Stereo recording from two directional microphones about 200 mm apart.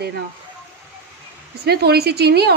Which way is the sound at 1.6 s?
55° right (ahead or behind).